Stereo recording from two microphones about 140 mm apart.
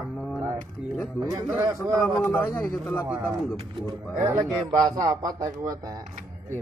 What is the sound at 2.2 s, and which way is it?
Speech, 15° left (ahead or behind).